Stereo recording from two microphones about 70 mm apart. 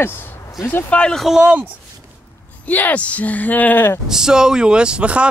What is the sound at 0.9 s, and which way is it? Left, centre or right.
Speech, centre.